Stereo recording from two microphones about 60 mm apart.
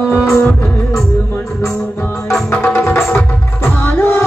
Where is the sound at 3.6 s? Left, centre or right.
Left.